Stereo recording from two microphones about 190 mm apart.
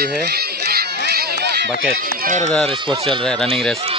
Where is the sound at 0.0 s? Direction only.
55° right (ahead or behind).